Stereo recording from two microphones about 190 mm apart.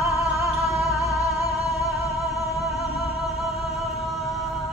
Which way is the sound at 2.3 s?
Centre (ahead or behind).